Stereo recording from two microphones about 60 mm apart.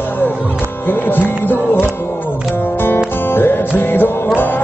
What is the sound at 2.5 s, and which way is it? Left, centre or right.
Music, left.